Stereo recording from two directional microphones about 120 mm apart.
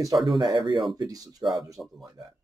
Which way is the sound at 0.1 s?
35° right (ahead or behind).